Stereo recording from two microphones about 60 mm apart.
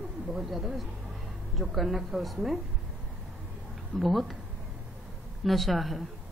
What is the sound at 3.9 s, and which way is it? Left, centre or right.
Speech, centre.